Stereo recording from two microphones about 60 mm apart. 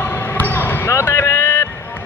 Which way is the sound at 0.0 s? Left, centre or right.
Left.